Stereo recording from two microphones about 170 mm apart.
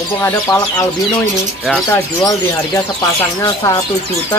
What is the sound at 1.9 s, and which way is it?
Speech, 20° left (ahead or behind).